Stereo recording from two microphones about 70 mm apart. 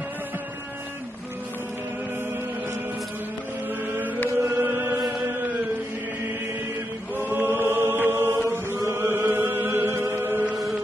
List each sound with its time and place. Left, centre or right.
4.4 s chant: right
7.2 s chant: right